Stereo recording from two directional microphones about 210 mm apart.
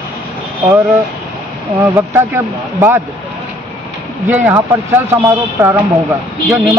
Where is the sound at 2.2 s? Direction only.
10° right (ahead or behind).